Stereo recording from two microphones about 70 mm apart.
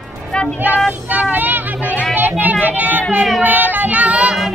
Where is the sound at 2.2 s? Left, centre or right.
Right.